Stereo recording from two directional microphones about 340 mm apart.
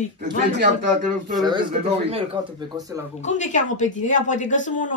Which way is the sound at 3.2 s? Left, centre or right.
Left.